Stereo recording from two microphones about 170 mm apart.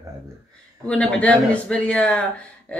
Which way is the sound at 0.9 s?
5° left (ahead or behind).